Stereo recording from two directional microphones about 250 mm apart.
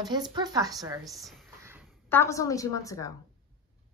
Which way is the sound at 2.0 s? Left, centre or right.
Centre.